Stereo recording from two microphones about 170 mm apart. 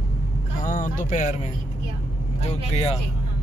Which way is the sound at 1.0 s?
50° left (ahead or behind).